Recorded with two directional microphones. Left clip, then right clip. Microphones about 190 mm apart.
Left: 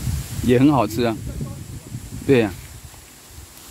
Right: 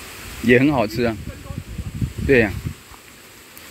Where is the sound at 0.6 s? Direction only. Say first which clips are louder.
Left 1 dB; 40° left (ahead or behind).